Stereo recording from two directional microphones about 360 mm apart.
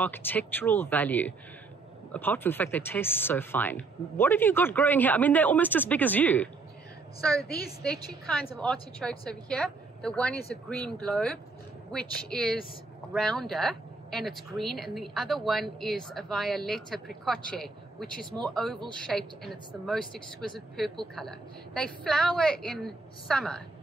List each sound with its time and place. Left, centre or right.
0.0 s speech: centre